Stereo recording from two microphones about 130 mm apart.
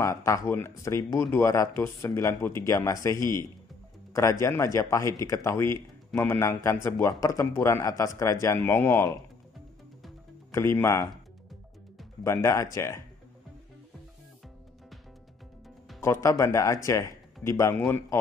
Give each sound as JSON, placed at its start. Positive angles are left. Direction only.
{"t": 0.0, "sound": "speech", "side_deg": 25}
{"t": 10.5, "sound": "speech", "side_deg": 20}
{"t": 12.2, "sound": "speech", "side_deg": 20}
{"t": 16.0, "sound": "speech", "side_deg": 20}